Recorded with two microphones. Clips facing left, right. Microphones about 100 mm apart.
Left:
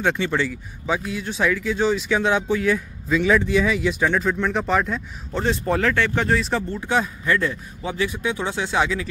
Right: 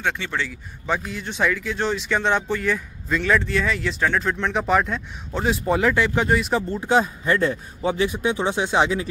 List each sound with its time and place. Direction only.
0.0 s speech: 5° left (ahead or behind)
6.8 s speech: 25° right (ahead or behind)